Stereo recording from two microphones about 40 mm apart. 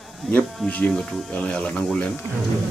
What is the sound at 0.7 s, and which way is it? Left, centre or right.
Speech, left.